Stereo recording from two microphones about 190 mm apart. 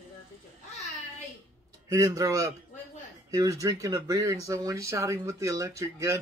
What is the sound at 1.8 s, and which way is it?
A man's voice, 20° right (ahead or behind).